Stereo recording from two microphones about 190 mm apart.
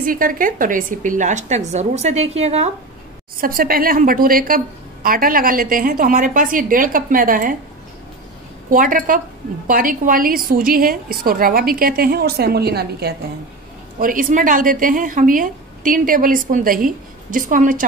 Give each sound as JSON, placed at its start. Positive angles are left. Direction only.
{"t": 0.0, "sound": "a woman's voice", "side_deg": -45}
{"t": 3.3, "sound": "a woman's voice", "side_deg": -50}
{"t": 8.6, "sound": "a woman's voice", "side_deg": -45}
{"t": 13.9, "sound": "a woman's voice", "side_deg": -45}